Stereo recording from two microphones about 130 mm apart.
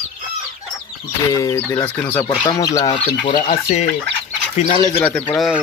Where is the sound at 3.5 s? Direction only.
60° left (ahead or behind).